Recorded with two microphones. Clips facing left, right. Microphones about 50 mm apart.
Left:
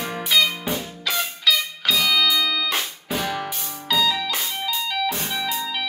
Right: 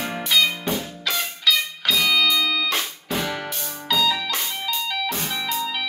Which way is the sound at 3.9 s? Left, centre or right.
Centre.